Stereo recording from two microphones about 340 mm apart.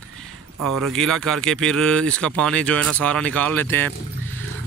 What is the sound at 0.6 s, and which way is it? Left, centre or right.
Speech, right.